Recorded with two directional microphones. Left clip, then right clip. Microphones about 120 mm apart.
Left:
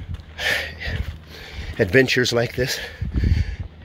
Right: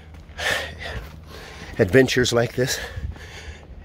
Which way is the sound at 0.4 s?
25° right (ahead or behind).